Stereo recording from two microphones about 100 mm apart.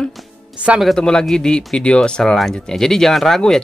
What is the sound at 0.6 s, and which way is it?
Speech, 10° right (ahead or behind).